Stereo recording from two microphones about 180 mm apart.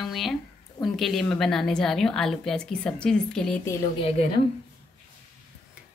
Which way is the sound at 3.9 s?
35° left (ahead or behind).